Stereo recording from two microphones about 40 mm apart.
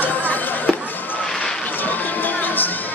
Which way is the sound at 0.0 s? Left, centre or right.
Left.